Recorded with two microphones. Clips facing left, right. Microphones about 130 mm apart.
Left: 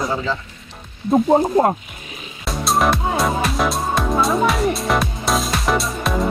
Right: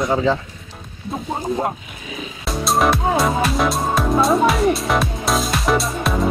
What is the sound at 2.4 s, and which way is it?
Music, centre (ahead or behind).